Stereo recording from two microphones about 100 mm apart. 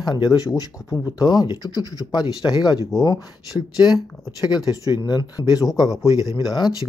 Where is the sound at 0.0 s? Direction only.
45° left (ahead or behind).